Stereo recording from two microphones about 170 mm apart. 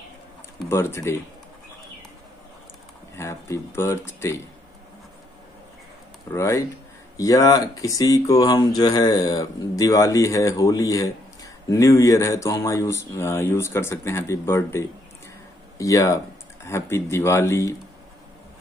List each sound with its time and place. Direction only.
0.7 s speech: 15° left (ahead or behind)
3.2 s speech: 15° left (ahead or behind)
6.3 s speech: 15° left (ahead or behind)